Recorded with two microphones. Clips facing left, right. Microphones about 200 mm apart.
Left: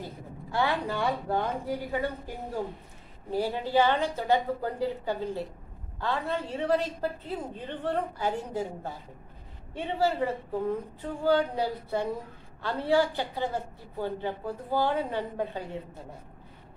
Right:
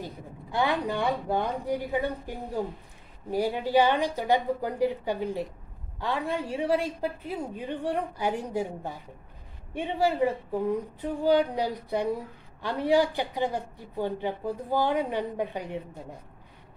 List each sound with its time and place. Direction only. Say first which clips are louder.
0.0 s a woman's voice: right 1 dB; 15° right (ahead or behind)